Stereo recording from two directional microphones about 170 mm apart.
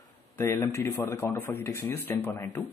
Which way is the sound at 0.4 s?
15° left (ahead or behind).